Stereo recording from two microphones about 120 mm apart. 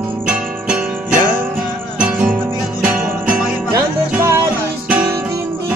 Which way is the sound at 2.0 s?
10° right (ahead or behind).